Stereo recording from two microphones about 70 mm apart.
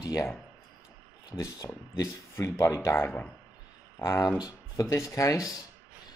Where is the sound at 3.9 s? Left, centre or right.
Left.